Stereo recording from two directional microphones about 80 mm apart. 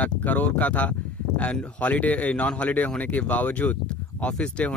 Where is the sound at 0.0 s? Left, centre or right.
Left.